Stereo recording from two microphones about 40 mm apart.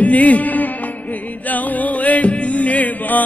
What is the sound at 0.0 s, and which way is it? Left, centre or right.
Music, left.